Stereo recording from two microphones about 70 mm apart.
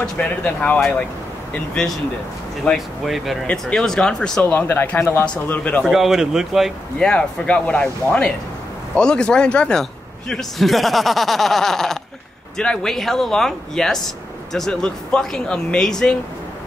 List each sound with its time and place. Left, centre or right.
0.0 s speech: centre
2.7 s speech: centre
4.5 s speech: left
5.2 s speech: centre
5.9 s a man's voice: centre
7.0 s a man's voice: centre